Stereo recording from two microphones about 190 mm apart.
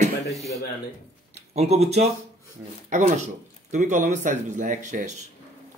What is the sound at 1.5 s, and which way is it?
Speech, 35° right (ahead or behind).